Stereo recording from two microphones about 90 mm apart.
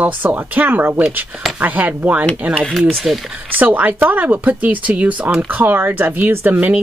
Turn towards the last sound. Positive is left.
turn(degrees=-20)  # may be behind; listen again after turning